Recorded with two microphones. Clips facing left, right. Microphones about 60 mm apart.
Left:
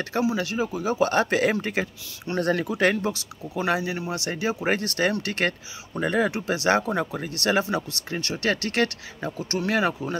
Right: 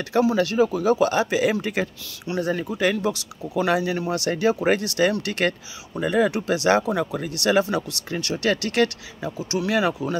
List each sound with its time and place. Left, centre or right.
0.0 s speech: left
0.3 s speech: centre
1.0 s speech: left
2.3 s speech: left
2.9 s speech: left
4.6 s speech: left